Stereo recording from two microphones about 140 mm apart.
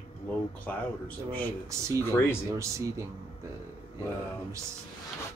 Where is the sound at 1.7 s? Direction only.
20° right (ahead or behind).